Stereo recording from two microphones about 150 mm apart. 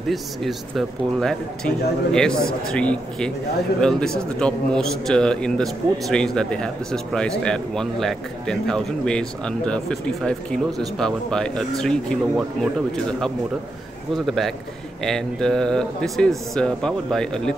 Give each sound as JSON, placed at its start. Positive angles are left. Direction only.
{"t": 0.1, "sound": "a man's voice", "side_deg": 0}
{"t": 14.1, "sound": "a man's voice", "side_deg": 0}